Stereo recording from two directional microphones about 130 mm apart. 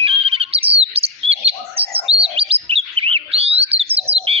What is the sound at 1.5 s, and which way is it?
Chirp, 50° right (ahead or behind).